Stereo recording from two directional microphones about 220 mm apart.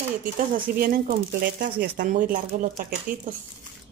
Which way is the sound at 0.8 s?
40° right (ahead or behind).